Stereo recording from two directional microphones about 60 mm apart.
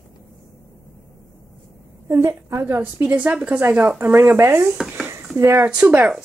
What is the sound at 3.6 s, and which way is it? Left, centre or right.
A woman's voice, right.